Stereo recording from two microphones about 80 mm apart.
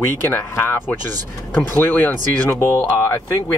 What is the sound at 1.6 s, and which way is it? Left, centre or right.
Speech, left.